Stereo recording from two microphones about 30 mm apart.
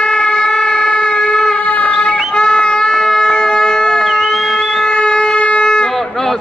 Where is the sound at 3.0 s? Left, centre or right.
Centre.